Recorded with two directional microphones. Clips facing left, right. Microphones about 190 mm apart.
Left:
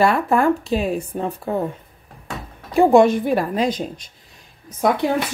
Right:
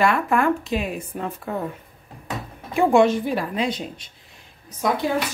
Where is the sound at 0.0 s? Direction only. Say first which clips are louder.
Left 3 dB; 35° left (ahead or behind).